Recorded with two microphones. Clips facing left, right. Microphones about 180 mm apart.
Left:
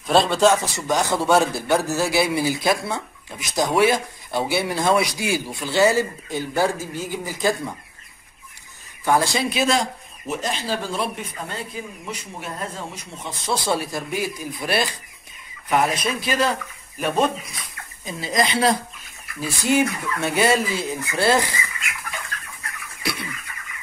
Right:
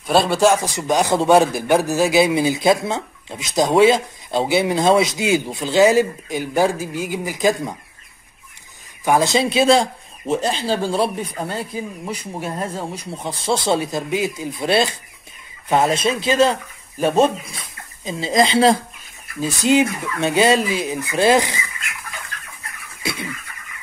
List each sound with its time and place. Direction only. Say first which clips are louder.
0.0 s speech: right 1 dB; 5° right (ahead or behind)
9.0 s speech: right 4 dB; 20° right (ahead or behind)